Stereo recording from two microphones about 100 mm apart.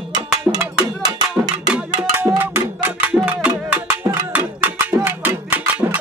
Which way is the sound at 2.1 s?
20° right (ahead or behind).